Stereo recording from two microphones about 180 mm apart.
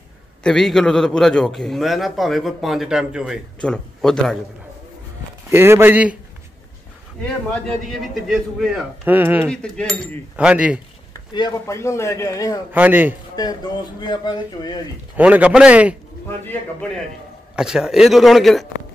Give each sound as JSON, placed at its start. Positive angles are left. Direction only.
{"t": 0.4, "sound": "a man's voice", "side_deg": 0}
{"t": 5.5, "sound": "a man's voice", "side_deg": -10}
{"t": 7.5, "sound": "a man's voice", "side_deg": 5}
{"t": 9.5, "sound": "a man's voice", "side_deg": 5}
{"t": 10.3, "sound": "a man's voice", "side_deg": -5}
{"t": 11.1, "sound": "speech", "side_deg": 20}
{"t": 12.7, "sound": "a man's voice", "side_deg": -10}
{"t": 14.0, "sound": "speech", "side_deg": 25}
{"t": 15.1, "sound": "a man's voice", "side_deg": -10}
{"t": 16.3, "sound": "speech", "side_deg": 10}
{"t": 17.6, "sound": "a man's voice", "side_deg": -5}